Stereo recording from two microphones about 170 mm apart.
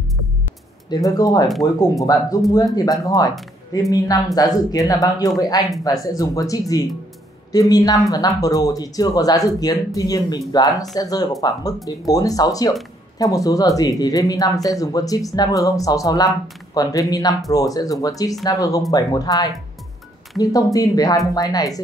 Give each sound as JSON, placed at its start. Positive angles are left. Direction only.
{"t": 0.8, "sound": "speech", "side_deg": 25}